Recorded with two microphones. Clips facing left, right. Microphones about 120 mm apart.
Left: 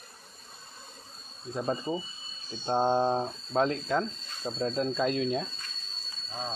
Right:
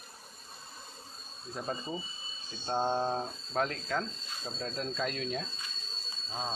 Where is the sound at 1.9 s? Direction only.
30° left (ahead or behind).